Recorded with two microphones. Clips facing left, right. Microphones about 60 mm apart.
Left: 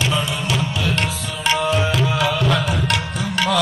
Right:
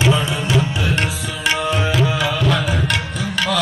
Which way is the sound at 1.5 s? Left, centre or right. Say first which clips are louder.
Left 1 dB; centre.